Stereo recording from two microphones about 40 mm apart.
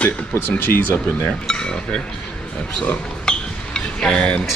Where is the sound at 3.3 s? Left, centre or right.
Centre.